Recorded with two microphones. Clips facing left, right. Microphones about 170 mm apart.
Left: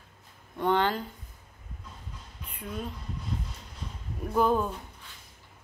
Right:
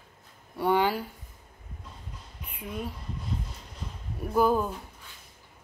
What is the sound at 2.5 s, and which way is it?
Speech, 5° right (ahead or behind).